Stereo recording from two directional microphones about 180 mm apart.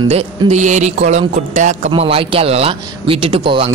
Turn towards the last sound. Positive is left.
turn(degrees=-30)  # may be behind; listen again after turning